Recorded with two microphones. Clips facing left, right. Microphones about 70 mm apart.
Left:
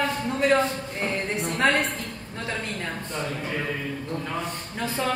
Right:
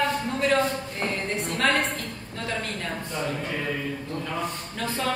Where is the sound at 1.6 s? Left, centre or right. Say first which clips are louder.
Left 1 dB; centre.